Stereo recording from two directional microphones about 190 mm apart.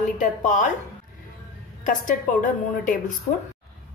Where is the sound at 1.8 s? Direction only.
45° left (ahead or behind).